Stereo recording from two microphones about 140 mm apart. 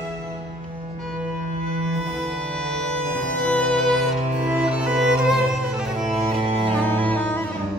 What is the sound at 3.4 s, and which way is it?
Music, 5° left (ahead or behind).